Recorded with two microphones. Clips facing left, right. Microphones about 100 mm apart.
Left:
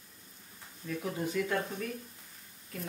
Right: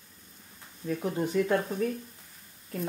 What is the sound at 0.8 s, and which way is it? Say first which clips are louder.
Speech: right 5 dB; 35° right (ahead or behind).